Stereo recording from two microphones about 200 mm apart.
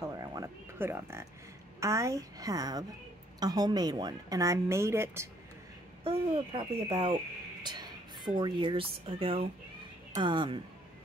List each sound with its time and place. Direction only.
0.2 s music: 15° right (ahead or behind)
1.8 s a woman's voice: 15° right (ahead or behind)
6.0 s speech: 25° right (ahead or behind)